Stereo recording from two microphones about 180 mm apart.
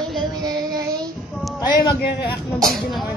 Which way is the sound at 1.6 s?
25° left (ahead or behind).